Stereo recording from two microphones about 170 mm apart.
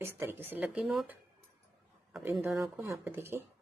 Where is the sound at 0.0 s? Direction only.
15° right (ahead or behind).